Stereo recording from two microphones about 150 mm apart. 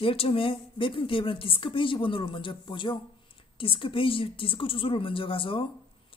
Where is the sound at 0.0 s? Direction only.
40° left (ahead or behind).